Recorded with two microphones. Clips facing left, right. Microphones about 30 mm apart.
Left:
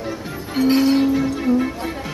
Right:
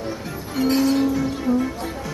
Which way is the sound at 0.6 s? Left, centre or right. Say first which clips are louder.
Left 3 dB; left.